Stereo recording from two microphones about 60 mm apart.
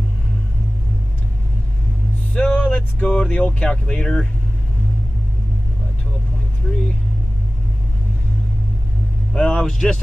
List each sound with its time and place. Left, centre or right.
2.3 s a sound: centre
3.2 s speech: centre
9.3 s speech: centre
9.6 s speech: centre